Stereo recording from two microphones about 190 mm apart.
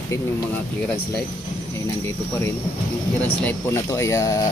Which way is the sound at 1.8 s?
15° left (ahead or behind).